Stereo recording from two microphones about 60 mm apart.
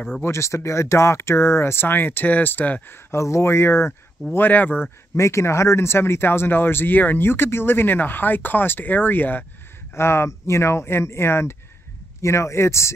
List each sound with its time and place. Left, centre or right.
0.2 s speech: left
2.9 s speech: left
5.1 s speech: left
9.9 s speech: left